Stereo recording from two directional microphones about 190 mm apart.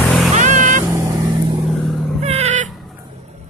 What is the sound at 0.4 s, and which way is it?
Vehicle, 40° right (ahead or behind).